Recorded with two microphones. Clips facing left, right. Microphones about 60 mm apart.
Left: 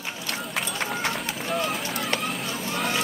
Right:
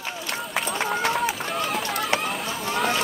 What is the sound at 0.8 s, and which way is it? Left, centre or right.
Run, centre.